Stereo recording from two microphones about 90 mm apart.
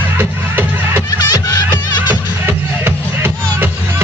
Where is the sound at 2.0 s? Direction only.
25° right (ahead or behind).